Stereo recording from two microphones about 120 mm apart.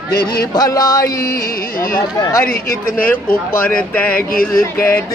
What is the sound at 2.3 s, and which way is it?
Music, 20° left (ahead or behind).